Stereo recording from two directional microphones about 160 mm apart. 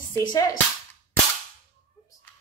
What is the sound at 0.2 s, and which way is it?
Cap gun, 25° left (ahead or behind).